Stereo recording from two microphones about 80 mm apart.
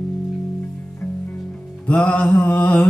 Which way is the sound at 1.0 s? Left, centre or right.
Left.